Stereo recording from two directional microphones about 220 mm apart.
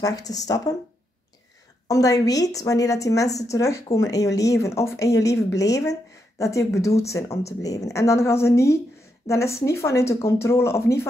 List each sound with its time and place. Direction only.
0.0 s speech: 15° left (ahead or behind)
1.9 s speech: 15° left (ahead or behind)